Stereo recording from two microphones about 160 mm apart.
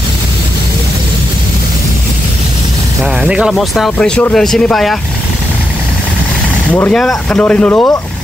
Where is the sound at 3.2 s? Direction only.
5° right (ahead or behind).